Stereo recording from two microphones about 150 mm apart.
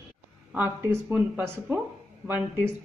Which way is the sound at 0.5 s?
15° right (ahead or behind).